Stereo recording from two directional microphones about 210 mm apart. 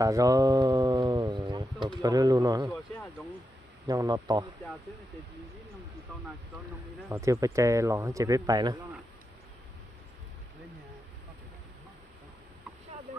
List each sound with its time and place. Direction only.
0.0 s speech: 15° right (ahead or behind)
3.8 s speech: 20° right (ahead or behind)
7.1 s speech: 15° right (ahead or behind)